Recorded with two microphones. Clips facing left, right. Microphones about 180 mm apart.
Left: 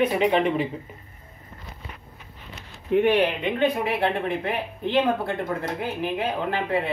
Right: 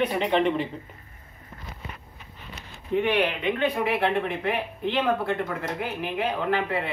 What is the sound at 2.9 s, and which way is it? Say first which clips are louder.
Speech: left 5 dB; 50° left (ahead or behind).